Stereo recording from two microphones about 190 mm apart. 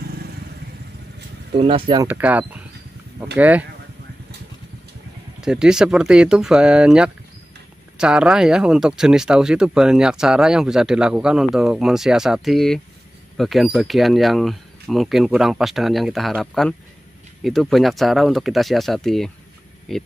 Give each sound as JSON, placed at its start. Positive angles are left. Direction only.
{"t": 1.5, "sound": "speech", "side_deg": -30}
{"t": 2.0, "sound": "speech", "side_deg": -10}
{"t": 5.4, "sound": "speech", "side_deg": -5}